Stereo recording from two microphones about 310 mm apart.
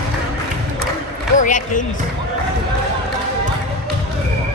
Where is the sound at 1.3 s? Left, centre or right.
Left.